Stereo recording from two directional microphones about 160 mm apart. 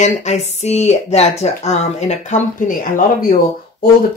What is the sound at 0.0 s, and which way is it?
Speech, 45° left (ahead or behind).